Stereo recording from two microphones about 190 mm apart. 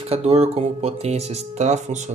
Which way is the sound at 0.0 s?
30° right (ahead or behind).